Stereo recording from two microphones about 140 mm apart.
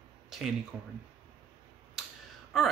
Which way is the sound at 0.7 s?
10° right (ahead or behind).